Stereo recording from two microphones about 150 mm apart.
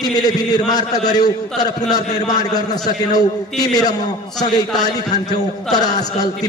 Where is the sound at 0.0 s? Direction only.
25° left (ahead or behind).